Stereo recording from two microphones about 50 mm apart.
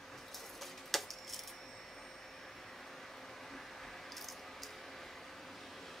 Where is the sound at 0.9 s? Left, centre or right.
Centre.